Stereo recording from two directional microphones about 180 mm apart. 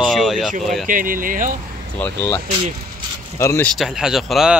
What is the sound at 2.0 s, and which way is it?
Speech, 10° left (ahead or behind).